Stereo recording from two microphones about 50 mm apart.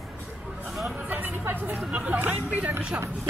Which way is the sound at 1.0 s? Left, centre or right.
Right.